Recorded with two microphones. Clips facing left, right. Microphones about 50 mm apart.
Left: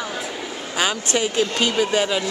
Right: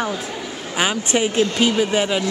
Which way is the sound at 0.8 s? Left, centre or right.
Centre.